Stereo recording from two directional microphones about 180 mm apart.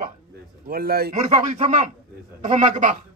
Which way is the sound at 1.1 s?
40° right (ahead or behind).